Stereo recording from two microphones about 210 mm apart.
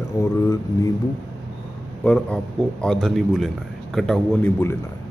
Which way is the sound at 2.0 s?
5° left (ahead or behind).